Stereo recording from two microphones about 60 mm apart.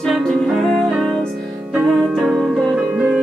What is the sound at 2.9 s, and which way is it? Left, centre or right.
Music, right.